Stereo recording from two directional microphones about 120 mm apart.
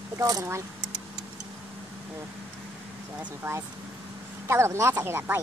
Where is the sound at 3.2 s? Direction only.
20° right (ahead or behind).